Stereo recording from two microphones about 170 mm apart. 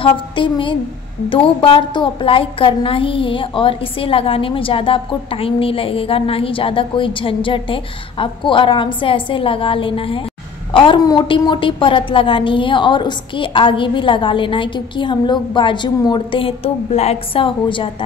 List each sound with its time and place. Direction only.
0.0 s a woman's voice: 30° left (ahead or behind)